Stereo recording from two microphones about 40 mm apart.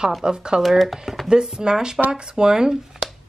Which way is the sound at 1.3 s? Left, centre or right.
Centre.